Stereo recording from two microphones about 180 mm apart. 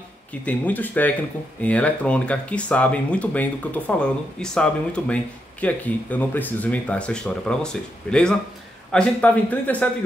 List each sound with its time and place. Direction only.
0.3 s speech: 10° left (ahead or behind)